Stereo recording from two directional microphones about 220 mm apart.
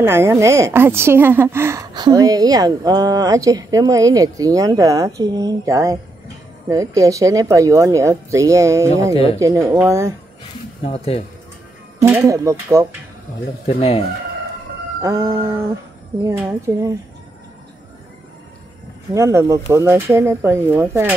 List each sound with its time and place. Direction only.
0.0 s a woman's voice: 10° right (ahead or behind)
9.1 s speech: 25° left (ahead or behind)
9.4 s a woman's voice: 15° right (ahead or behind)
10.8 s speech: 25° left (ahead or behind)
12.0 s a woman's voice: 15° right (ahead or behind)
13.7 s speech: 25° left (ahead or behind)
15.0 s a woman's voice: 10° right (ahead or behind)
19.1 s a woman's voice: 15° right (ahead or behind)